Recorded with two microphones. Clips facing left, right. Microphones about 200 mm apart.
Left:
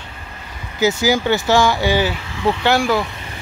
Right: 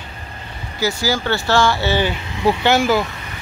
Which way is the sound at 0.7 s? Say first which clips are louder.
Left 4 dB; 20° left (ahead or behind).